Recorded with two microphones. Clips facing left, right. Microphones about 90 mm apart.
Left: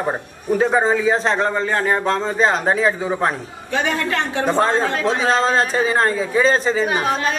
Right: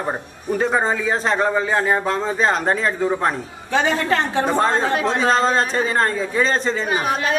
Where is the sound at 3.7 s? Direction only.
35° right (ahead or behind).